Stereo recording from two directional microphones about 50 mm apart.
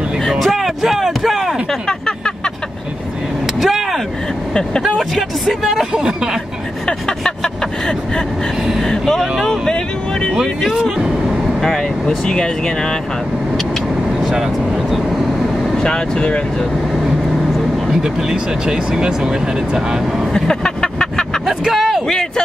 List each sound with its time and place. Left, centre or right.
0.3 s music: centre
1.7 s a sound: centre
3.5 s vehicle: centre
4.8 s speech: centre
5.9 s speech: centre
6.9 s vehicle: centre
8.8 s speech: centre
9.4 s vehicle: centre
11.6 s speech: centre
14.2 s speech: centre
15.7 s speech: centre
17.8 s speech: centre
20.3 s vehicle: centre
21.5 s vehicle: centre